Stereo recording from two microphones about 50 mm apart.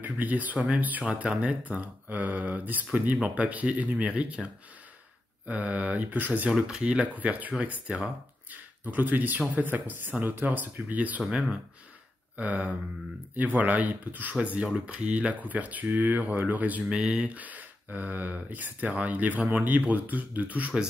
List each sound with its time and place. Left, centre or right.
0.0 s speech: right
1.0 s speech: right
2.9 s speech: right
5.5 s speech: right
6.8 s speech: right
12.4 s speech: right
16.9 s speech: right